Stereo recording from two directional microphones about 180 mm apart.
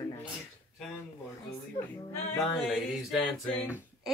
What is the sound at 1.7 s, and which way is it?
Speech, 15° left (ahead or behind).